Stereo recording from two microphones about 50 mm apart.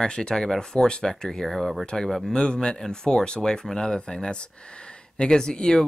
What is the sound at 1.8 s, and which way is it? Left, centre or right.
Speech, centre.